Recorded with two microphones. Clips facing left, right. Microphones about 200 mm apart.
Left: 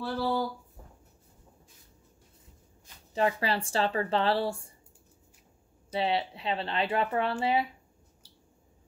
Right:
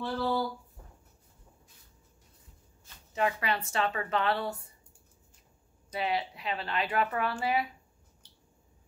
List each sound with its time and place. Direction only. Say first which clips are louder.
0.0 s speech: left 1 dB; 10° left (ahead or behind)
3.1 s speech: left 2 dB; 30° left (ahead or behind)
5.9 s speech: left 3 dB; 30° left (ahead or behind)
8.2 s a sound: left 3 dB; 10° left (ahead or behind)